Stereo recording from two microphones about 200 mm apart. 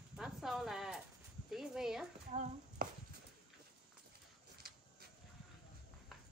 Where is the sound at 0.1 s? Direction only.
Centre (ahead or behind).